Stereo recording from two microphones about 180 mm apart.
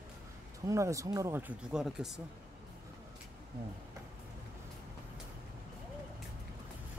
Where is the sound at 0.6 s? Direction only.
15° right (ahead or behind).